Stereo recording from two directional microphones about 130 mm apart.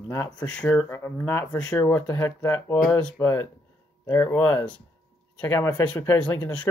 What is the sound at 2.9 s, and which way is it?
Speech, 10° left (ahead or behind).